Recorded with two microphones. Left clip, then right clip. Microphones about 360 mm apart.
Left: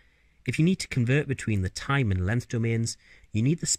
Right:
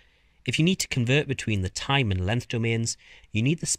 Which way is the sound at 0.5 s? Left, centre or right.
Right.